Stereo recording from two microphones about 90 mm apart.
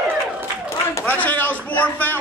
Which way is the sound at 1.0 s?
20° left (ahead or behind).